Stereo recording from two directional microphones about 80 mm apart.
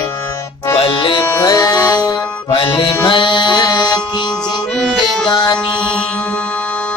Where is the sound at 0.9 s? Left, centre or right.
Left.